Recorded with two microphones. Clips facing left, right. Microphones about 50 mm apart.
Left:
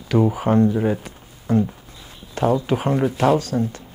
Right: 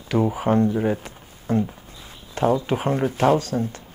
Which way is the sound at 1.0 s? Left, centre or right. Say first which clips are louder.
Left 1 dB; right.